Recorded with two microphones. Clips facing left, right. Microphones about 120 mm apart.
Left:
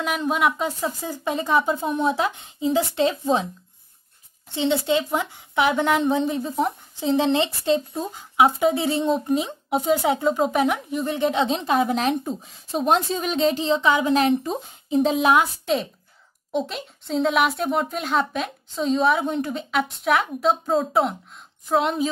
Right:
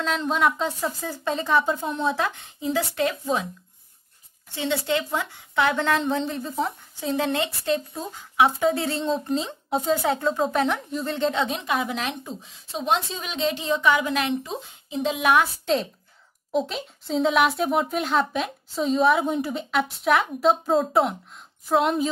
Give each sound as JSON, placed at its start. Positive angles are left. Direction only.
{"t": 0.0, "sound": "a woman's voice", "side_deg": 10}
{"t": 4.6, "sound": "a woman's voice", "side_deg": 20}
{"t": 11.3, "sound": "a woman's voice", "side_deg": 25}
{"t": 15.6, "sound": "speech", "side_deg": 0}